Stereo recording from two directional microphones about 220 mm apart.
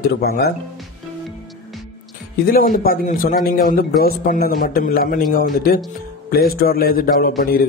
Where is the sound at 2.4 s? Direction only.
40° left (ahead or behind).